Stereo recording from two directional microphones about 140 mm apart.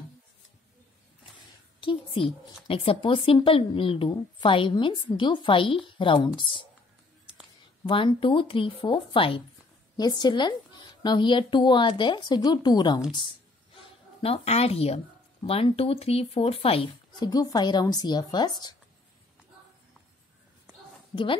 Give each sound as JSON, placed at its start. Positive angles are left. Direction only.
{"t": 1.3, "sound": "a sound", "side_deg": 40}
{"t": 2.7, "sound": "speech", "side_deg": 40}
{"t": 7.8, "sound": "speech", "side_deg": 35}
{"t": 14.2, "sound": "speech", "side_deg": 45}
{"t": 17.2, "sound": "speech", "side_deg": 30}
{"t": 21.1, "sound": "a woman's voice", "side_deg": 40}